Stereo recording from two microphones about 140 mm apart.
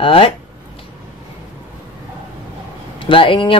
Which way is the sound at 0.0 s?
40° left (ahead or behind).